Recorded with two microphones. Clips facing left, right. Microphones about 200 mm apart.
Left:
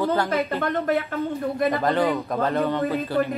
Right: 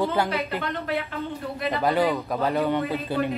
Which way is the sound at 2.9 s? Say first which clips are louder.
Left 3 dB; 15° right (ahead or behind).